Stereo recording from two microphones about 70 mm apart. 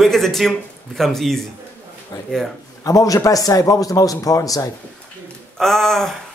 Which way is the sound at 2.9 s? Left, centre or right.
Left.